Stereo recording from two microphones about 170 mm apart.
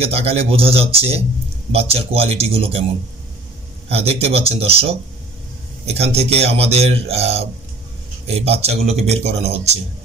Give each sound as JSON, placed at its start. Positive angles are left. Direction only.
{"t": 0.0, "sound": "speech", "side_deg": -35}
{"t": 3.9, "sound": "speech", "side_deg": -35}